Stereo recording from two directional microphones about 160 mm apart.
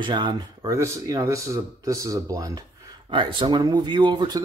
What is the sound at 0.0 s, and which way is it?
Speech, 30° right (ahead or behind).